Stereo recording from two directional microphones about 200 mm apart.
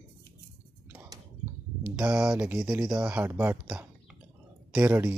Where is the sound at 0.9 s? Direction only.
10° right (ahead or behind).